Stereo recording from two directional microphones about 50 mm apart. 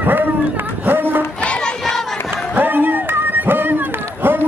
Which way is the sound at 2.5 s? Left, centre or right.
Right.